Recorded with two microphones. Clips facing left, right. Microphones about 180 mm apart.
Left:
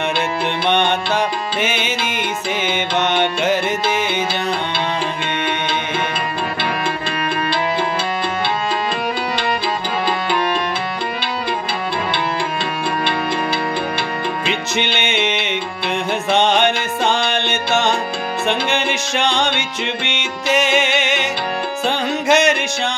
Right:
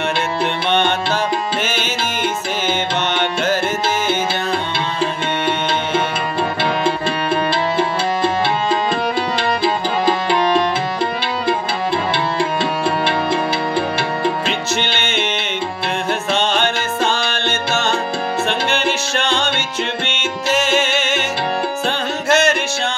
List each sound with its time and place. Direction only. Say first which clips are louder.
0.7 s music: left 1 dB; 15° left (ahead or behind)
14.8 s music: left 1 dB; 15° left (ahead or behind)